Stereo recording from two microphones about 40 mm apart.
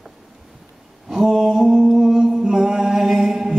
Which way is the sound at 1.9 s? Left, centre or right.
Centre.